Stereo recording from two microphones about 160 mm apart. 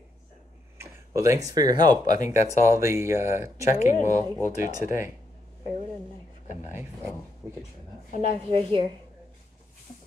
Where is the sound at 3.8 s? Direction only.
55° left (ahead or behind).